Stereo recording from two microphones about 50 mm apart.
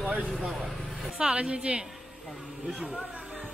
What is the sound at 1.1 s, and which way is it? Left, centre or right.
Speech, right.